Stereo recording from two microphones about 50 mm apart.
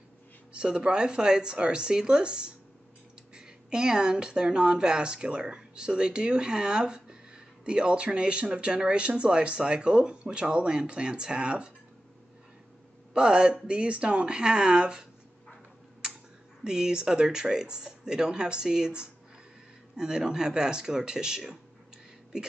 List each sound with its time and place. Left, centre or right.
0.5 s speech: centre
13.1 s speech: centre
16.6 s speech: centre